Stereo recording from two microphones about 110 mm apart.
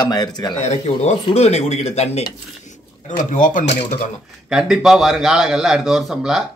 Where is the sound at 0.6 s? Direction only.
90° left.